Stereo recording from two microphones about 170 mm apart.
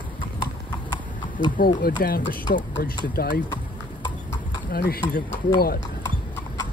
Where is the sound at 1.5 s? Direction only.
60° left (ahead or behind).